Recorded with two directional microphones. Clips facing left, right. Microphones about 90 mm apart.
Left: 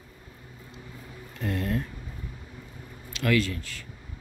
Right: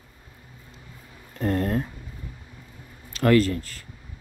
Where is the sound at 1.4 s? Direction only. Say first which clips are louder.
Right 5 dB; 40° right (ahead or behind).